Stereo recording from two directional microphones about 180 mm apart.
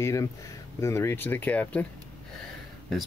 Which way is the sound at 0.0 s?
15° left (ahead or behind).